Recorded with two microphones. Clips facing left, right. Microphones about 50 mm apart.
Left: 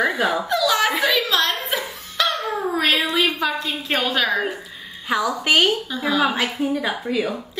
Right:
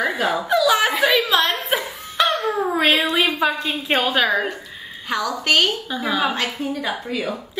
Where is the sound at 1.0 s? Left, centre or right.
Centre.